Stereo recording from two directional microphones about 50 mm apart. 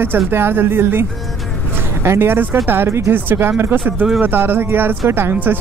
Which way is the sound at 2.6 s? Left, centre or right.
Right.